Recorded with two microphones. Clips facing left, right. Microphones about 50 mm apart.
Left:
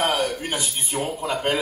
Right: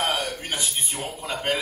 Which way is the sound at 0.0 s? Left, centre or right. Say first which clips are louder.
Left 4 dB; left.